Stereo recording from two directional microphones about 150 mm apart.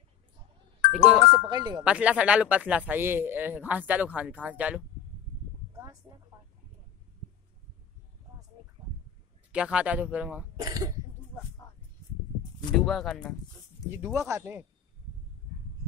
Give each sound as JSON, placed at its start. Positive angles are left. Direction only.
{"t": 1.2, "sound": "speech", "side_deg": -30}
{"t": 1.8, "sound": "speech", "side_deg": -10}
{"t": 5.7, "sound": "a sound", "side_deg": -20}
{"t": 9.5, "sound": "speech", "side_deg": -5}
{"t": 10.6, "sound": "speech", "side_deg": -25}
{"t": 12.7, "sound": "speech", "side_deg": 0}
{"t": 13.9, "sound": "speech", "side_deg": -20}